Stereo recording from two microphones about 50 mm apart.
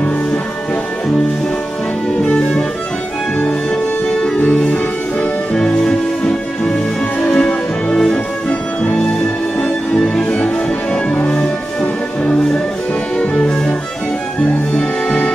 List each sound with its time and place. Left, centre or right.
2.2 s music: left
5.5 s music: centre
8.5 s music: left
10.3 s music: left
14.7 s music: left